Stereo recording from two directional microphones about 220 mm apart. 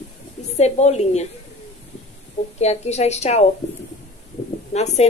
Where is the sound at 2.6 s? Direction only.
30° left (ahead or behind).